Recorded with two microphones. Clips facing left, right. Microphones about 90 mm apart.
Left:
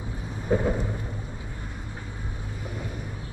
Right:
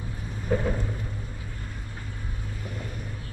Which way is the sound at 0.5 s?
20° left (ahead or behind).